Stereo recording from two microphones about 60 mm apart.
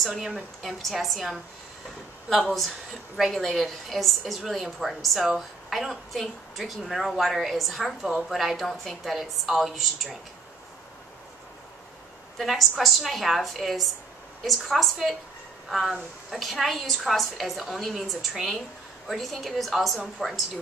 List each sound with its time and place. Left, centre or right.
0.0 s a woman's voice: centre
3.2 s a woman's voice: centre
12.4 s a woman's voice: centre